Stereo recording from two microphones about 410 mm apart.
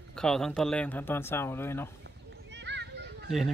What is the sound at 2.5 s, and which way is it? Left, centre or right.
Children playing, right.